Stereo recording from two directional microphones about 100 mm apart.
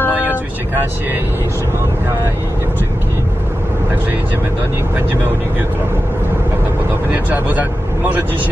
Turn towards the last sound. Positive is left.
turn(degrees=-15)  # may be behind; listen again after turning